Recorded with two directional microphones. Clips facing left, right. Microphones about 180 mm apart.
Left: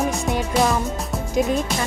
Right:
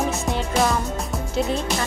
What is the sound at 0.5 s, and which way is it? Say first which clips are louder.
Music: left 1 dB; centre (ahead or behind).